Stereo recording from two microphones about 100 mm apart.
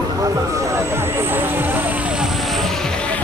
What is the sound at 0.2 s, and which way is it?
Vehicle, 30° right (ahead or behind).